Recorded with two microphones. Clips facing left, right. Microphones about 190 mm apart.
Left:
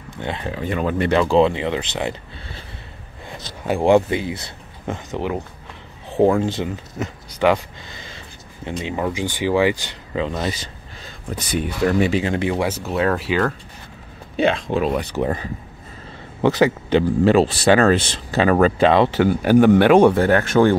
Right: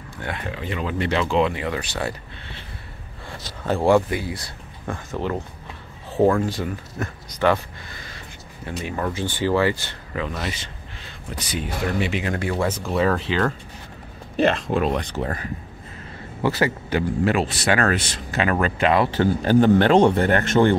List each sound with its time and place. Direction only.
0.2 s speech: 25° left (ahead or behind)
0.7 s speech: 50° left (ahead or behind)
1.3 s speech: 25° left (ahead or behind)
3.3 s speech: 15° left (ahead or behind)
7.2 s speech: 10° left (ahead or behind)
10.2 s speech: 30° left (ahead or behind)
11.3 s speech: 55° left (ahead or behind)
12.1 s speech: 25° left (ahead or behind); by 15.2 s 5° left (ahead or behind)
16.4 s speech: 20° left (ahead or behind)